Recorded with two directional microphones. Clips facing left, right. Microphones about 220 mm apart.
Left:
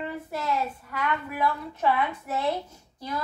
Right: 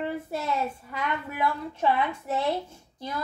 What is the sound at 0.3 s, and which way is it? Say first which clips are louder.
A woman's voice: even; 25° right (ahead or behind).